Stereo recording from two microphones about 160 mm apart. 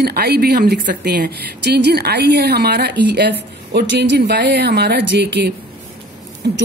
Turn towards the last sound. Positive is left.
turn(degrees=-85)